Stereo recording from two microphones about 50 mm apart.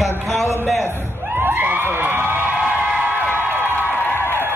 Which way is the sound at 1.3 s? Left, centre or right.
Right.